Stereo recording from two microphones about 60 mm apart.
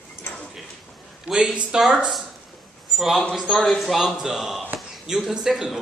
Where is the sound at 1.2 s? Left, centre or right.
Centre.